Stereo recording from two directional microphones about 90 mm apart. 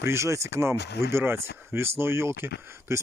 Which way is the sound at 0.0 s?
30° right (ahead or behind).